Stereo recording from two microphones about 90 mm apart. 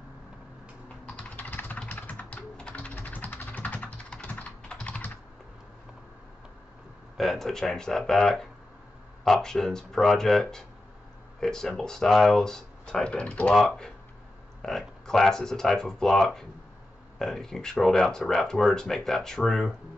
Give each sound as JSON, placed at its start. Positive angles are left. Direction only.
{"t": 1.0, "sound": "typing", "side_deg": 15}
{"t": 7.2, "sound": "speech", "side_deg": 0}